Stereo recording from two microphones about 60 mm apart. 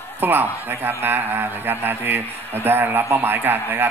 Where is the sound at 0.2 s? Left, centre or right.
Right.